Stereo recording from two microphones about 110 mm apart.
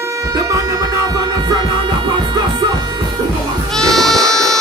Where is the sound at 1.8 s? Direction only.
40° right (ahead or behind).